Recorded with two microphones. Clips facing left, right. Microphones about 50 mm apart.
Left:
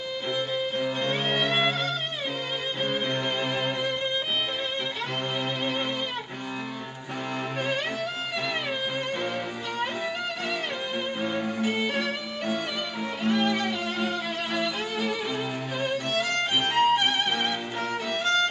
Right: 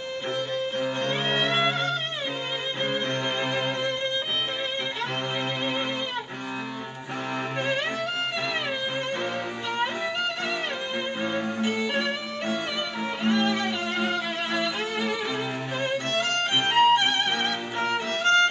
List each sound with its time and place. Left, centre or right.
0.7 s music: centre
2.8 s violin: centre
5.6 s music: centre
11.1 s music: centre
17.2 s music: centre
17.8 s music: right